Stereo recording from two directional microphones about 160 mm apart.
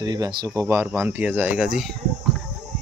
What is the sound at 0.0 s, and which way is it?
Speech, 25° right (ahead or behind).